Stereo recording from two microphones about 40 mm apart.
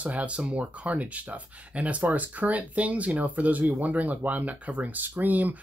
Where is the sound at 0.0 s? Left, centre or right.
Right.